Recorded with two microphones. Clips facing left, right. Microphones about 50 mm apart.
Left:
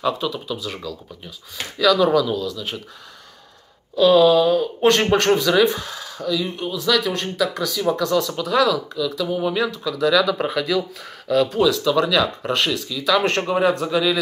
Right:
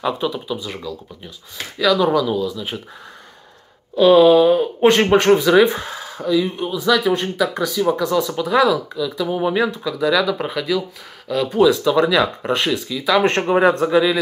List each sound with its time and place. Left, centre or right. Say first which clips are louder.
0.0 s speech: right 1 dB; centre
3.9 s speech: right 3 dB; right
5.0 s speech: right 4 dB; centre
10.3 s speech: even; centre
11.6 s speech: right 3 dB; right
13.6 s speech: right 5 dB; right